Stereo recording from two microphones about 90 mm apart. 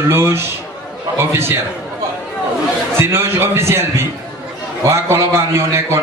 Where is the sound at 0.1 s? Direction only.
30° right (ahead or behind).